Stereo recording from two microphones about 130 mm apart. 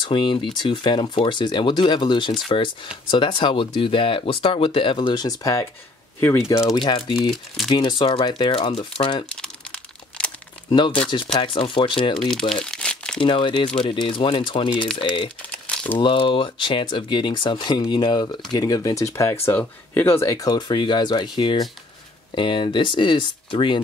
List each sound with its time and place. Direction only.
0.0 s speech: 40° left (ahead or behind)
7.0 s speech: 50° left (ahead or behind)
7.7 s speech: 35° left (ahead or behind)
9.4 s crumpling: 5° left (ahead or behind)
11.3 s speech: 40° left (ahead or behind)
12.3 s speech: 5° left (ahead or behind)
12.6 s crumpling: 5° left (ahead or behind)
13.2 s speech: 40° left (ahead or behind)
15.6 s crumpling: 10° left (ahead or behind)
16.0 s speech: 45° left (ahead or behind)